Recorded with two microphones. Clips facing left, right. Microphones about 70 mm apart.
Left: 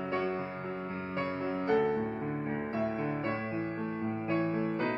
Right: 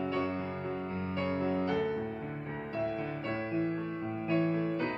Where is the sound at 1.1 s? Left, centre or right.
Left.